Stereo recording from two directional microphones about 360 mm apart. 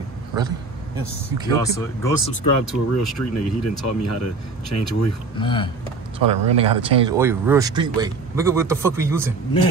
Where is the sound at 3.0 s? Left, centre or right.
Left.